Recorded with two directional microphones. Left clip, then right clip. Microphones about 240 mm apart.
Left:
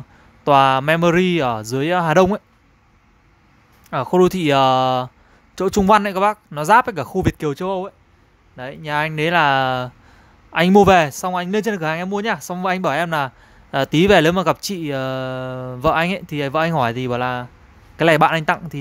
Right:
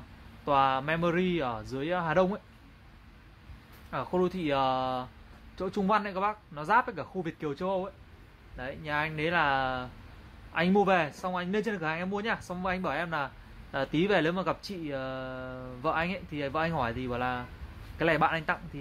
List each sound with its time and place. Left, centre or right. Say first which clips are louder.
0.5 s speech: left 12 dB; left
3.9 s speech: left 14 dB; left